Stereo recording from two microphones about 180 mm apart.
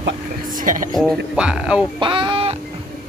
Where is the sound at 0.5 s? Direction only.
50° right (ahead or behind).